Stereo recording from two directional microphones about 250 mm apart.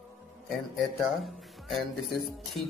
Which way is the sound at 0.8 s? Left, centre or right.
Centre.